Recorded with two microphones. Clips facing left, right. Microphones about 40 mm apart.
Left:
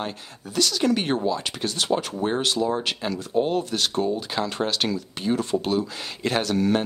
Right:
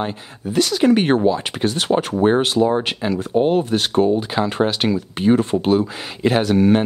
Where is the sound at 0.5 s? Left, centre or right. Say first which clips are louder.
Right 7 dB; right.